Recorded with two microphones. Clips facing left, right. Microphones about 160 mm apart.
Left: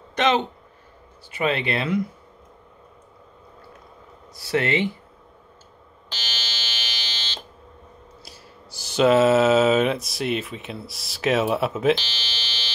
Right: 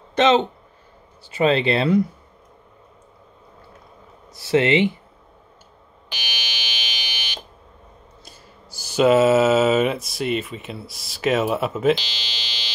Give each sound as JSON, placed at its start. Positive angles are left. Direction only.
{"t": 0.1, "sound": "speech", "side_deg": -25}
{"t": 4.3, "sound": "speech", "side_deg": -25}
{"t": 6.0, "sound": "fire alarm", "side_deg": -15}
{"t": 8.8, "sound": "speech", "side_deg": -5}
{"t": 11.9, "sound": "speech", "side_deg": -15}